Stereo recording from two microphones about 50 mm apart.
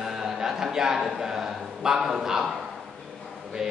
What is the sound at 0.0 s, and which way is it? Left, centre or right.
Speech, centre.